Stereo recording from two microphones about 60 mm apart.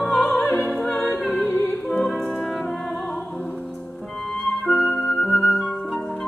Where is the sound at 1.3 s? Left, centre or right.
Left.